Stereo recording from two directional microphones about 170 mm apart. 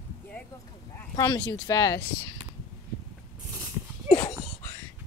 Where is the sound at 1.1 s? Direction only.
20° left (ahead or behind).